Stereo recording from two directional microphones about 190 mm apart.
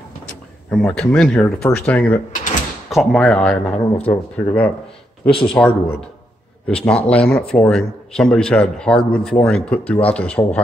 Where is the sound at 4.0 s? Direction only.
30° left (ahead or behind).